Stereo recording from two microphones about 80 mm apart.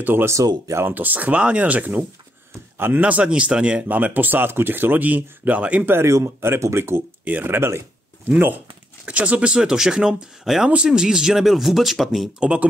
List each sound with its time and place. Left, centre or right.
0.0 s speech: right
0.9 s speech: right
6.0 s speech: right; by 12.3 s centre
12.4 s speech: centre